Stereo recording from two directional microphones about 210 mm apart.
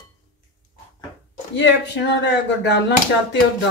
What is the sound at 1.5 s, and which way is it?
Speech, 55° left (ahead or behind).